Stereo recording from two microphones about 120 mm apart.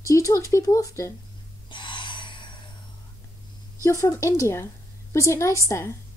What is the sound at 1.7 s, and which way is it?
Gasp, 40° left (ahead or behind).